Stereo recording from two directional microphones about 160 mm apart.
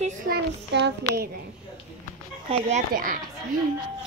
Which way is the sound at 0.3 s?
90° right.